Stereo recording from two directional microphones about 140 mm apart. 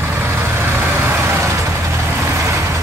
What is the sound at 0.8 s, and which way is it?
Vehicle, 15° right (ahead or behind).